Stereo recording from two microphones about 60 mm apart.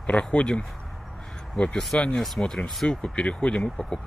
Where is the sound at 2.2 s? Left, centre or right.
Centre.